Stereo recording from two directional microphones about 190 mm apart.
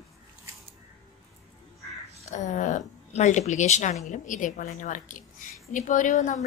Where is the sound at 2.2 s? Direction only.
40° left (ahead or behind).